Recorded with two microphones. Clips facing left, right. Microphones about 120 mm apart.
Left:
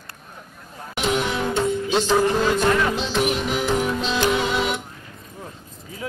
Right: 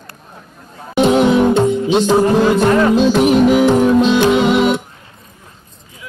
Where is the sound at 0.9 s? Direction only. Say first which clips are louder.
Right 12 dB; 25° right (ahead or behind).